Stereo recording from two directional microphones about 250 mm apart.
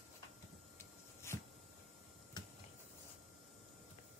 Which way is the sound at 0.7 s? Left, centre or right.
Centre.